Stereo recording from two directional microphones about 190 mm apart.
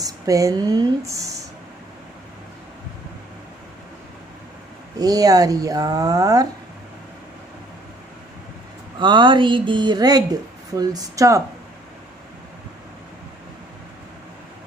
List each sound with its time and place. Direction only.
0.0 s speech: 20° right (ahead or behind)
4.9 s speech: 20° right (ahead or behind)
9.0 s speech: 25° right (ahead or behind)